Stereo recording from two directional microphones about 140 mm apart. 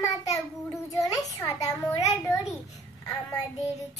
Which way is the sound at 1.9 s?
25° left (ahead or behind).